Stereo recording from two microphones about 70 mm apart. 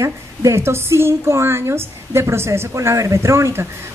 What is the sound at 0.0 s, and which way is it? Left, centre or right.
A woman's voice, right.